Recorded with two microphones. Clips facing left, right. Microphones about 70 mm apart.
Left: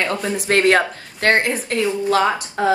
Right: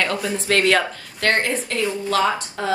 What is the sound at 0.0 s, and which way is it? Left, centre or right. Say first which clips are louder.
A woman's voice: left 1 dB; left.